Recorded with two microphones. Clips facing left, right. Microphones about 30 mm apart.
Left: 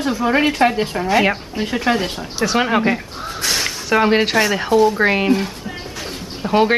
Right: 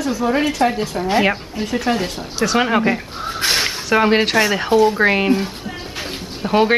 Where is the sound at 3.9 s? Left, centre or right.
Centre.